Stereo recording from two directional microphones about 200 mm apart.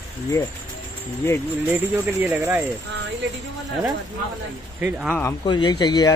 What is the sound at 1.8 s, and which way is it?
Speech, 10° right (ahead or behind).